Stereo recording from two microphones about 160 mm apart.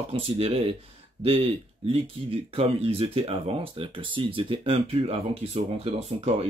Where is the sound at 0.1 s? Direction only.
40° right (ahead or behind).